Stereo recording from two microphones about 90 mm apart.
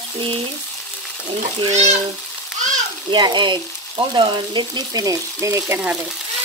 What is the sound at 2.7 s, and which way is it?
Speech, 55° right (ahead or behind).